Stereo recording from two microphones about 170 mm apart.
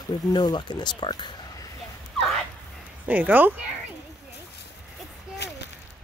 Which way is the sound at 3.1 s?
10° right (ahead or behind).